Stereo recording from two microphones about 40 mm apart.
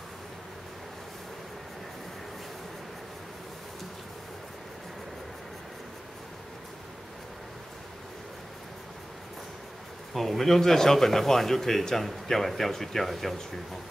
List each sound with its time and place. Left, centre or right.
10.1 s a man's voice: centre